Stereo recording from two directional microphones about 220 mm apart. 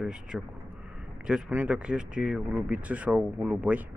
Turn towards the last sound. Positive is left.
turn(degrees=-5)  # may be behind; listen again after turning